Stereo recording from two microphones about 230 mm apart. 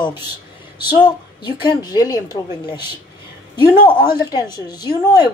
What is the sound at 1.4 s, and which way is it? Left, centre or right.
A woman's voice, centre.